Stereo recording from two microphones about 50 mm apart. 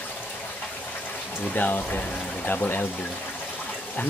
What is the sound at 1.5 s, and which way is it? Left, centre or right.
Speech, left.